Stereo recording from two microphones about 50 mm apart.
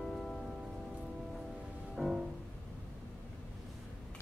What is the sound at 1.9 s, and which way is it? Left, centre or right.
Music, centre.